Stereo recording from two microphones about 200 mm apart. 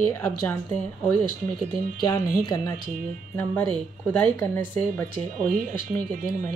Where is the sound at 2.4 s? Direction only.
20° left (ahead or behind).